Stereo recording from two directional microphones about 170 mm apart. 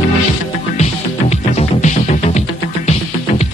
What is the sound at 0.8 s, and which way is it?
Music, 40° left (ahead or behind).